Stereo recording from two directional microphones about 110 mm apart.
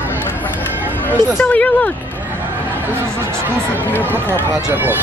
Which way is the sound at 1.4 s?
15° left (ahead or behind).